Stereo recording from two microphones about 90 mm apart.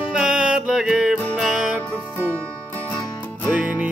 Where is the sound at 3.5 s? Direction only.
10° right (ahead or behind).